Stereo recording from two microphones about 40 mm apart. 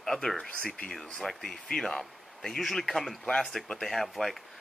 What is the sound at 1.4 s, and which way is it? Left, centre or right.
A man's voice, centre.